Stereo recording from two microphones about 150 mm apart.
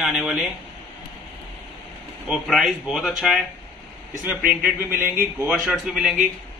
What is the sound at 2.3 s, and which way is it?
A man's voice, centre (ahead or behind).